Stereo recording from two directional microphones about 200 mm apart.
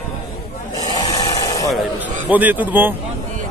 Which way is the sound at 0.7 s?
20° left (ahead or behind).